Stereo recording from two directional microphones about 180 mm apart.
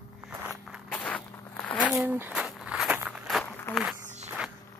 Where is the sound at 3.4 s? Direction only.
10° left (ahead or behind).